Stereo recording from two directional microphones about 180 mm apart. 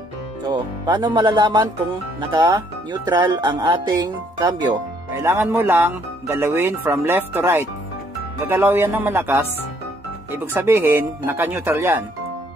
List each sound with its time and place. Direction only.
0.5 s speech: 25° right (ahead or behind)